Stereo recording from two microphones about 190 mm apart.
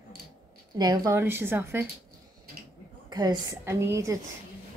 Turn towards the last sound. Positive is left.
turn(degrees=-15)  # may be behind; listen again after turning